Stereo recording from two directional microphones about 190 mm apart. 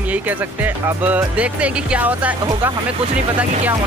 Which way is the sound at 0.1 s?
10° right (ahead or behind).